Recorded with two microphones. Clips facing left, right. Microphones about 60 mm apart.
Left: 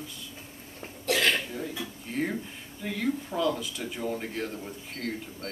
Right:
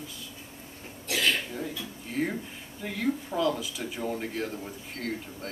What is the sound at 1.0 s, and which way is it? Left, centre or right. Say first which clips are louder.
Cough: left 2 dB; left.